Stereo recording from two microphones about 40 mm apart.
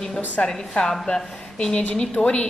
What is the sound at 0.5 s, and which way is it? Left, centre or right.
A man's voice, centre.